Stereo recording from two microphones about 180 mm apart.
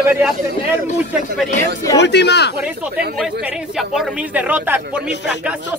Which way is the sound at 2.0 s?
70° left (ahead or behind).